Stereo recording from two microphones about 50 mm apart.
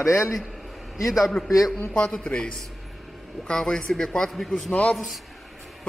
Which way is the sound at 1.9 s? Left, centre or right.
Left.